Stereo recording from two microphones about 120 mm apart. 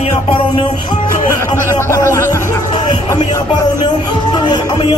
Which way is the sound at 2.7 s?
40° left (ahead or behind).